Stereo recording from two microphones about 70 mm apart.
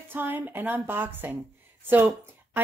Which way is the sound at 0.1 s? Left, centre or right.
Right.